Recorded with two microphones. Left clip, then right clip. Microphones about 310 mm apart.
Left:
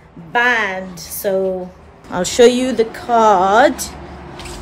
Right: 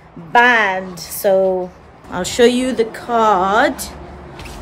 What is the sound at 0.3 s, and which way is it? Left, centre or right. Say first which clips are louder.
A woman's voice: right 4 dB; centre.